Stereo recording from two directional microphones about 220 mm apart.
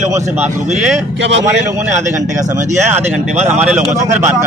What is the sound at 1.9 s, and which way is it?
A man's voice, 35° right (ahead or behind).